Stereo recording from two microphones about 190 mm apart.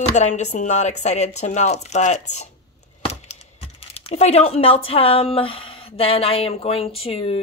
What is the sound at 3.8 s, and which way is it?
Speech, 30° left (ahead or behind).